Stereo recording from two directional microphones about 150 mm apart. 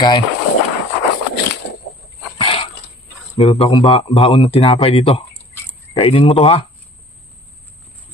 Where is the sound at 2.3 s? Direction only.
35° left (ahead or behind).